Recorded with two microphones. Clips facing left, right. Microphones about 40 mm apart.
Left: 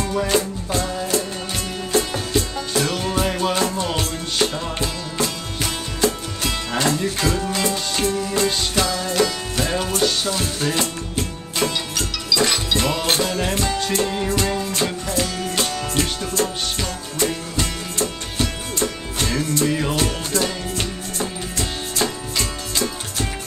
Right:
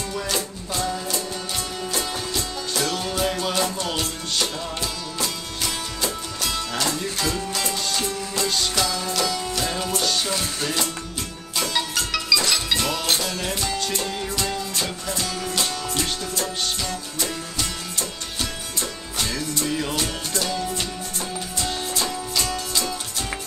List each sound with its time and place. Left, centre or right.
0.1 s music: centre
2.0 s music: centre
6.4 s music: centre
12.4 s music: centre
19.6 s music: centre